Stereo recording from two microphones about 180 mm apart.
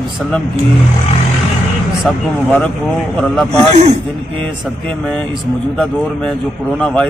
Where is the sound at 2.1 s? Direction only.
Centre (ahead or behind).